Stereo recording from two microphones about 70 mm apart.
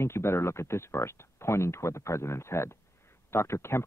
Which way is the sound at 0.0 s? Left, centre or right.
Left.